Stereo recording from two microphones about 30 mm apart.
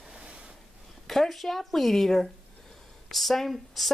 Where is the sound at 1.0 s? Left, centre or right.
Centre.